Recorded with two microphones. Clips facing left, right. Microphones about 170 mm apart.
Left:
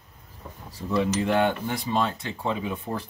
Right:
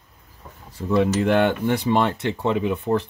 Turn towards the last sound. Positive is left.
turn(degrees=-70)  # may be behind; listen again after turning